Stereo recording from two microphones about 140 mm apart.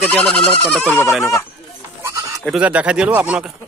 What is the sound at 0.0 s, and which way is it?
Speech, 5° left (ahead or behind).